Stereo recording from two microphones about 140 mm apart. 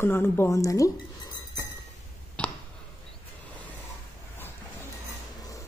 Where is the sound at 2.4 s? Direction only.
10° left (ahead or behind).